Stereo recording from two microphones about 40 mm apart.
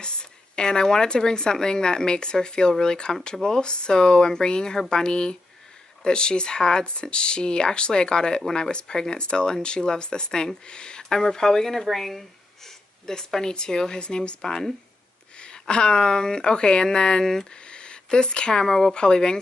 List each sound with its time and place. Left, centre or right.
0.0 s speech: left